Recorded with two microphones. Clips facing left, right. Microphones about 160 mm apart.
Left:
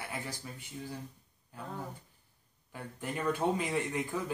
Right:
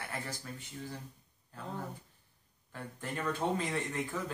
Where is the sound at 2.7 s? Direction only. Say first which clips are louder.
Left 2 dB; 15° left (ahead or behind).